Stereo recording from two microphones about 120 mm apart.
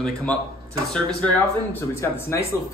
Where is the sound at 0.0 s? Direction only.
10° left (ahead or behind).